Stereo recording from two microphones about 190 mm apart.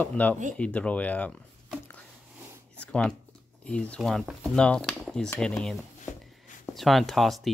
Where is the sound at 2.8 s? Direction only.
5° left (ahead or behind).